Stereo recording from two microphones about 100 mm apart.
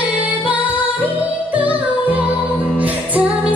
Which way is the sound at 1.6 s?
15° right (ahead or behind).